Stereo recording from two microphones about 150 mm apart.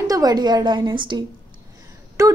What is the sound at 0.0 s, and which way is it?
A woman's voice, 25° right (ahead or behind).